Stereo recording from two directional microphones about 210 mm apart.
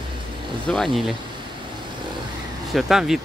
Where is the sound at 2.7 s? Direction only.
Centre (ahead or behind).